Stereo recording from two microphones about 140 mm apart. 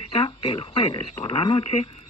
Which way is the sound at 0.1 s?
40° left (ahead or behind).